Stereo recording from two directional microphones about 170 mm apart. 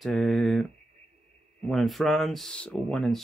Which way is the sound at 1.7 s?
Centre (ahead or behind).